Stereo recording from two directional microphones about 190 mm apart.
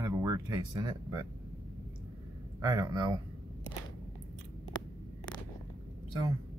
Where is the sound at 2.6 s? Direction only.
20° right (ahead or behind).